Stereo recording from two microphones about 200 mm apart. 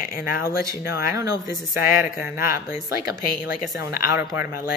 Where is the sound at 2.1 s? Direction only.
10° right (ahead or behind).